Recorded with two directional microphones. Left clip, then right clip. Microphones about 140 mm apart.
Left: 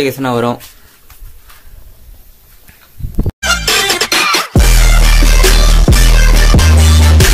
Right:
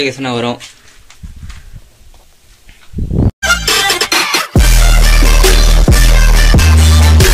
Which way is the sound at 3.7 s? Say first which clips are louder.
Left 2 dB; 5° right (ahead or behind).